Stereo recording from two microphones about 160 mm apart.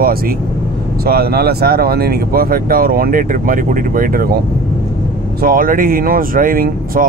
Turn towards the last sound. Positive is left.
turn(degrees=-60)  # may be behind; listen again after turning